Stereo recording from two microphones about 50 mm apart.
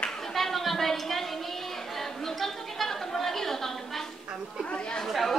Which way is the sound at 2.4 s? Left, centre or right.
Centre.